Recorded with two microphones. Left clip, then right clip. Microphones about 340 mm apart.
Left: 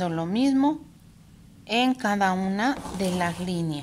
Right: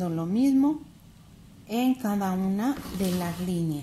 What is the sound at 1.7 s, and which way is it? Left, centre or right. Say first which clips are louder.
A woman's voice: left 4 dB; left.